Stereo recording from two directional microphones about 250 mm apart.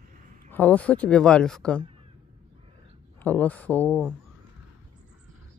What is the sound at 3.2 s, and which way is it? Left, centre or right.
Speech, centre.